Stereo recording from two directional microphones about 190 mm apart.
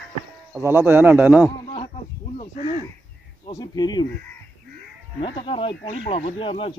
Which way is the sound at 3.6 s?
20° left (ahead or behind).